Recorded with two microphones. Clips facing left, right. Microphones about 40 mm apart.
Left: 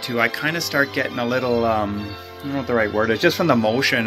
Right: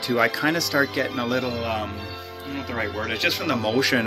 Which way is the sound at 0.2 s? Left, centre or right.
Centre.